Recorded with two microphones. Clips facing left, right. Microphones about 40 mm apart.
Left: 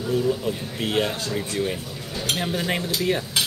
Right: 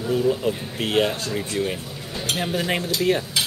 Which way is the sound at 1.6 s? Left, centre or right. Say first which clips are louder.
Even; centre.